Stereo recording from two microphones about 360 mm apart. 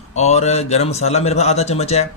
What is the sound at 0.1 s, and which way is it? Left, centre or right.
Speech, centre.